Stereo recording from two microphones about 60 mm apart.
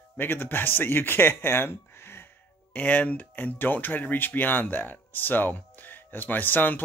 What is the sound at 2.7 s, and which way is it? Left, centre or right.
Speech, left.